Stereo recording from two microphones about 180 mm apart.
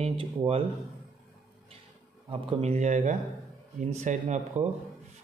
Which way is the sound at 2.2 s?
30° right (ahead or behind).